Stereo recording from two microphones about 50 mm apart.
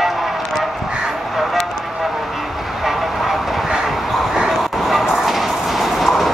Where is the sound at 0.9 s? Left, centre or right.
Centre.